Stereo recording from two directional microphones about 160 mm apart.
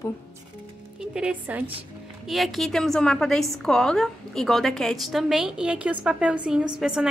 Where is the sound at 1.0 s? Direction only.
5° right (ahead or behind).